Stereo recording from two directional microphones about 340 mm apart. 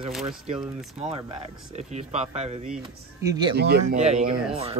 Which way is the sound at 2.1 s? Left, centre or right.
Centre.